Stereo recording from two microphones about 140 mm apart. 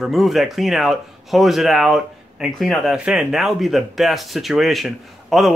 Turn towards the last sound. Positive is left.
turn(degrees=0)  # may be behind; listen again after turning